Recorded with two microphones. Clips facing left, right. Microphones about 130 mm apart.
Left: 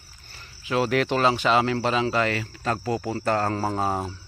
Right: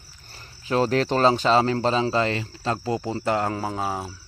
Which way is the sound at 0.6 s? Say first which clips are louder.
Right 1 dB; 35° right (ahead or behind).